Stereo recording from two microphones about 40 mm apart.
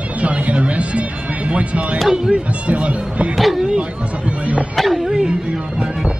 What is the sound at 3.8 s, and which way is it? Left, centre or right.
Speech, right.